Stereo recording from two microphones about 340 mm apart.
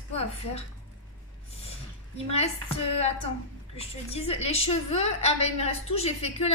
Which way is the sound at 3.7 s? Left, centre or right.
Centre.